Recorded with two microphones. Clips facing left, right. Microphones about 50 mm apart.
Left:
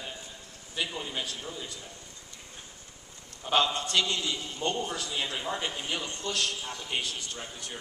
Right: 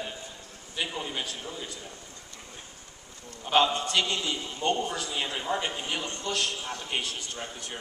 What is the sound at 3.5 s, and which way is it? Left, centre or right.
A man's voice, right.